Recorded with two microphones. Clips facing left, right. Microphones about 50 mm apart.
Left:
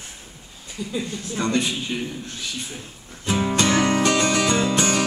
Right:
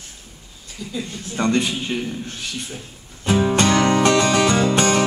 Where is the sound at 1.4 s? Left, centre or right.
Right.